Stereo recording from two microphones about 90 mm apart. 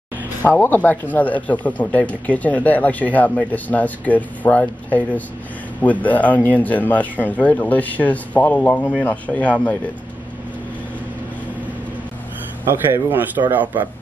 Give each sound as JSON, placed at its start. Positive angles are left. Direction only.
{"t": 0.4, "sound": "speech", "side_deg": 15}
{"t": 12.6, "sound": "speech", "side_deg": -25}